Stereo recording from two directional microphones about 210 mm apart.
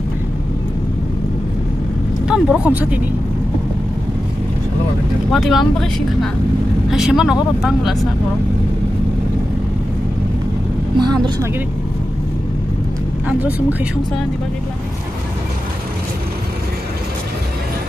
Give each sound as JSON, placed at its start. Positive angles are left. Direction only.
{"t": 2.2, "sound": "speech", "side_deg": -5}
{"t": 5.3, "sound": "speech", "side_deg": 0}
{"t": 11.0, "sound": "speech", "side_deg": -20}
{"t": 13.3, "sound": "speech", "side_deg": -10}